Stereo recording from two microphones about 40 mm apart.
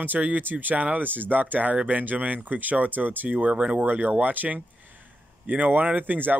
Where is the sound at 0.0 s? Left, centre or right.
Right.